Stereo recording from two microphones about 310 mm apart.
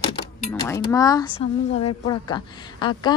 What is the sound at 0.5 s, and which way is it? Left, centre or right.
Speech, centre.